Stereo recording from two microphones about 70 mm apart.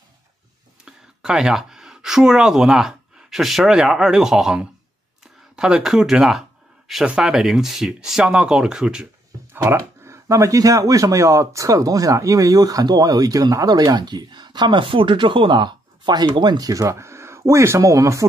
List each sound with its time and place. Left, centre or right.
0.8 s speech: centre
9.7 s speech: right